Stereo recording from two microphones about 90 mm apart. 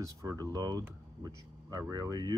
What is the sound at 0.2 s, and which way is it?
Speech, 40° right (ahead or behind).